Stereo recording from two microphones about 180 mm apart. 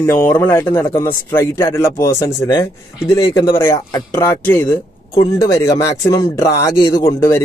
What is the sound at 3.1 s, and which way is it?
A man's voice, 25° left (ahead or behind).